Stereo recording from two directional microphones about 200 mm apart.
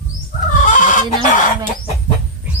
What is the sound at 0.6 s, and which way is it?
Chicken, 40° left (ahead or behind).